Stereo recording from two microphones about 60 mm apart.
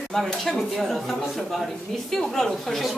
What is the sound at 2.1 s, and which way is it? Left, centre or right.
Speech, centre.